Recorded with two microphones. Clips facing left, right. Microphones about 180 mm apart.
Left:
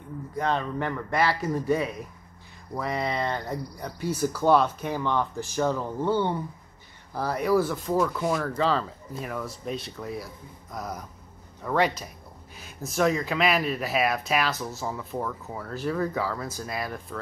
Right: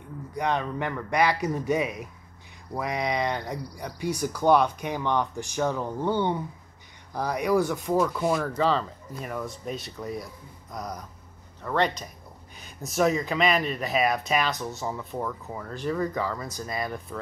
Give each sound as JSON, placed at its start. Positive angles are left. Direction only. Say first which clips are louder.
{"t": 0.4, "sound": "speech", "louder": "even", "side_deg": -15}
{"t": 7.5, "sound": "speech", "louder": "even", "side_deg": 0}
{"t": 7.8, "sound": "a man's voice", "louder": "right 1 dB", "side_deg": -10}